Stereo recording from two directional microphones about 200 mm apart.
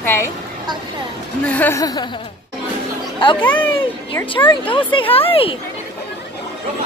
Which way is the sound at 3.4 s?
10° left (ahead or behind).